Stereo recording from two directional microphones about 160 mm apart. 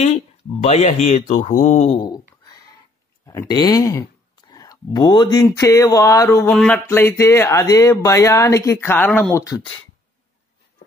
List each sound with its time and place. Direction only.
0.0 s speech: 45° left (ahead or behind)
1.9 s speech: 25° left (ahead or behind)
3.3 s speech: 20° left (ahead or behind)